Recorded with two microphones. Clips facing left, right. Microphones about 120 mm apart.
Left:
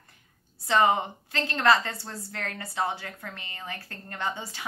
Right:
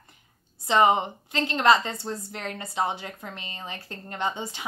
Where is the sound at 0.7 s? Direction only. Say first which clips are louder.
Right 2 dB; 20° right (ahead or behind).